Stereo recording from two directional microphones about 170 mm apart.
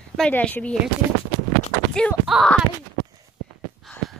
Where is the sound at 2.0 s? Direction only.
Centre (ahead or behind).